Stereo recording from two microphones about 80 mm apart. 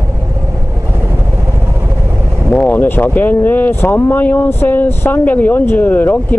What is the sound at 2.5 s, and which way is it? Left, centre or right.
Speech, left.